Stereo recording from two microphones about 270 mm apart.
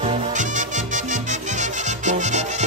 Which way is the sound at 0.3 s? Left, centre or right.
Right.